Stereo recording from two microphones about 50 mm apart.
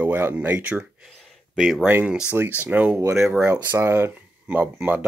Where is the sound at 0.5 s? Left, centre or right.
Right.